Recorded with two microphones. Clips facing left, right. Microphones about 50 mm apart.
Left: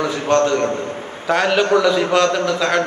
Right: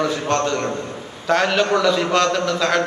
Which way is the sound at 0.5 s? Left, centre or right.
Left.